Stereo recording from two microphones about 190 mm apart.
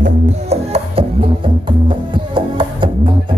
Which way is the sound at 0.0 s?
35° right (ahead or behind).